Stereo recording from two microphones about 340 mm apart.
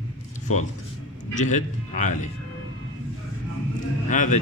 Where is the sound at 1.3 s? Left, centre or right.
Left.